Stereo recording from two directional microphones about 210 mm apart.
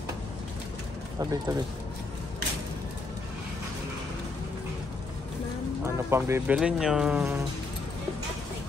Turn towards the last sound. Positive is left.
turn(degrees=-5)  # may be behind; listen again after turning